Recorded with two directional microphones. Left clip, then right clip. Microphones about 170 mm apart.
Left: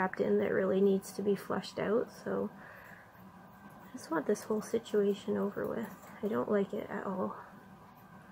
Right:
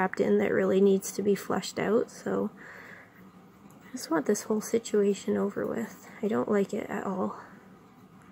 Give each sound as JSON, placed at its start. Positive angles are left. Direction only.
{"t": 0.0, "sound": "speech", "side_deg": -45}
{"t": 3.9, "sound": "speech", "side_deg": -45}